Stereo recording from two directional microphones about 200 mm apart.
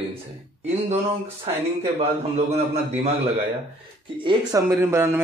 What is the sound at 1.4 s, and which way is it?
A man's voice, 30° right (ahead or behind).